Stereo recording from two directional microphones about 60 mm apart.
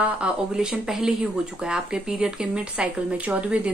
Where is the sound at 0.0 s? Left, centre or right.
Centre.